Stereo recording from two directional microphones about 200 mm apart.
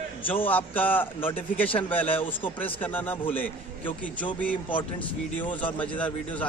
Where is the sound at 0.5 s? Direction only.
10° left (ahead or behind).